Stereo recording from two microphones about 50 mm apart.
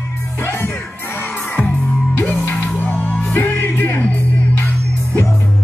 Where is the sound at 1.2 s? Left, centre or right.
Left.